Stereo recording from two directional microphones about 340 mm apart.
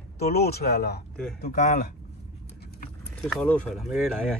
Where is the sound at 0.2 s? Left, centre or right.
Left.